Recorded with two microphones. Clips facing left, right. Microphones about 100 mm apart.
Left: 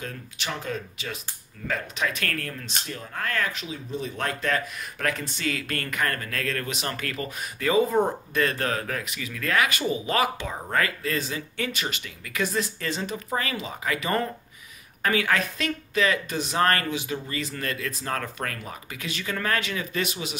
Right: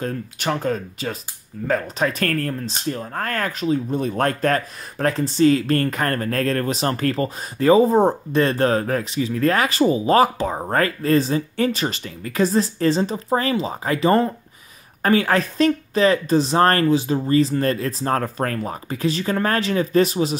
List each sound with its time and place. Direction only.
0.0 s speech: 45° right (ahead or behind)
4.9 s speech: 35° right (ahead or behind)